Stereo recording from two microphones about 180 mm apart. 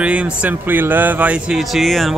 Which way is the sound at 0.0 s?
5° right (ahead or behind).